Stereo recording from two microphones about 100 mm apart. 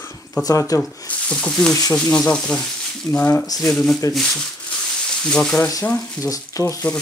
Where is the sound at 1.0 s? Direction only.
10° left (ahead or behind).